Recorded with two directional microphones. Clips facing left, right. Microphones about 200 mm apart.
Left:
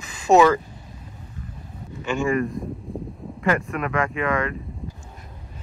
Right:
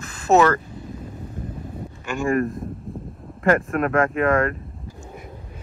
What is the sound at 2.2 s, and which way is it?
Speech, 50° right (ahead or behind).